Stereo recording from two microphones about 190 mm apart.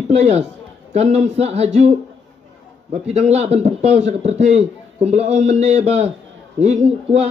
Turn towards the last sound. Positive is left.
turn(degrees=-35)  # may be behind; listen again after turning